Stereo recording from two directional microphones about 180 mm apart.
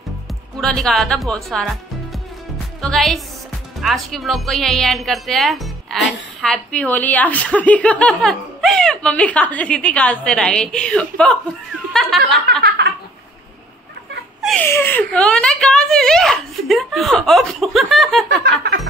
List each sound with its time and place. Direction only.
0.6 s speech: centre (ahead or behind)
2.8 s speech: centre (ahead or behind)
11.9 s snicker: 5° left (ahead or behind)
12.6 s a sound: 70° right (ahead or behind)
14.4 s giggle: centre (ahead or behind)
14.7 s speech: 10° left (ahead or behind)